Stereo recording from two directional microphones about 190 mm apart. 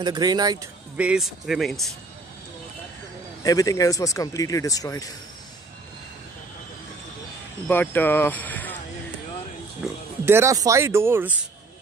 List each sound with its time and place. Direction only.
0.0 s speech: 20° right (ahead or behind)
0.9 s speech: 5° right (ahead or behind)
3.4 s speech: 20° left (ahead or behind)
7.6 s speech: 10° left (ahead or behind)
9.8 s oink: 5° right (ahead or behind)
10.2 s speech: 15° right (ahead or behind)